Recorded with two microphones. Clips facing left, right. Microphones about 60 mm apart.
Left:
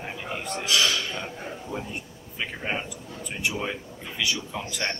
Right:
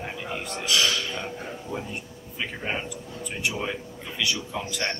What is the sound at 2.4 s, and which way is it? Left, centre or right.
Speech, centre.